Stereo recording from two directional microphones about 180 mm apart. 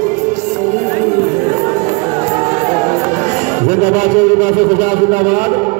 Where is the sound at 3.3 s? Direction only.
45° right (ahead or behind).